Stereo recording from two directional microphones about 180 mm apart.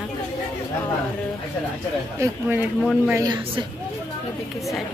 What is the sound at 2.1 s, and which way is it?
Speech, 10° right (ahead or behind).